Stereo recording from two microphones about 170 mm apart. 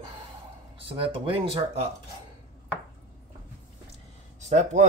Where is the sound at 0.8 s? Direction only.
30° right (ahead or behind).